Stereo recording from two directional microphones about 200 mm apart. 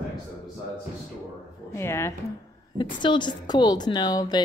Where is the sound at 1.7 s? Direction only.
15° left (ahead or behind).